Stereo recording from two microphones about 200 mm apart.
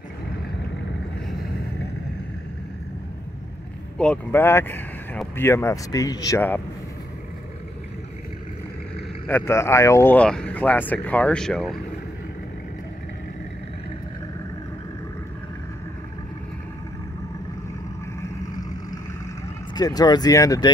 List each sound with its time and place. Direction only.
4.0 s speech: 10° left (ahead or behind)
9.3 s speech: 15° left (ahead or behind)
19.7 s speech: 20° left (ahead or behind)